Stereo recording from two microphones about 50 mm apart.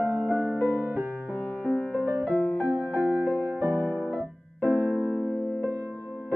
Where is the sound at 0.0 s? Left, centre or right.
Right.